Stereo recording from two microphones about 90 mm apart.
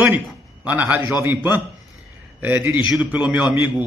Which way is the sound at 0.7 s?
20° right (ahead or behind).